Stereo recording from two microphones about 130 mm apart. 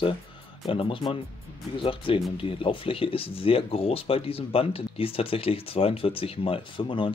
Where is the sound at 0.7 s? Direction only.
45° left (ahead or behind).